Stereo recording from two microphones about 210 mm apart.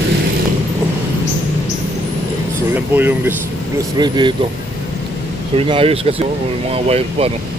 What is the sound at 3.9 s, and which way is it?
Speech, 20° right (ahead or behind).